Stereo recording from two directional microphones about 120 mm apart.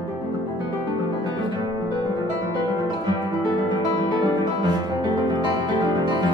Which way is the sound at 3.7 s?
40° right (ahead or behind).